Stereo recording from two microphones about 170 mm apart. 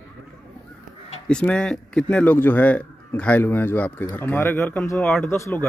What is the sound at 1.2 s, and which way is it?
Speech, 5° left (ahead or behind).